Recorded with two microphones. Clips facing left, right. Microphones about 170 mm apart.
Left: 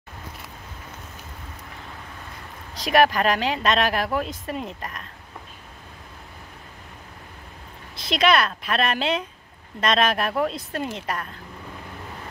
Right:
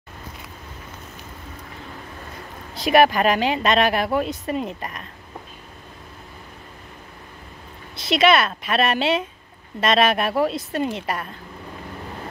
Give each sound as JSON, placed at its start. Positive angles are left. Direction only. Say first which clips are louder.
{"t": 2.8, "sound": "speech", "louder": "right 3 dB", "side_deg": -5}
{"t": 8.0, "sound": "speech", "louder": "right 3 dB", "side_deg": 0}